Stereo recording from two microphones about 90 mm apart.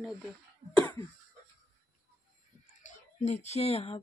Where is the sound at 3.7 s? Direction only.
90° left.